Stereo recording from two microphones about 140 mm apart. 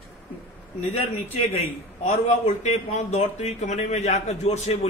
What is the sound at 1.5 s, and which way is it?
A man's voice, 55° left (ahead or behind).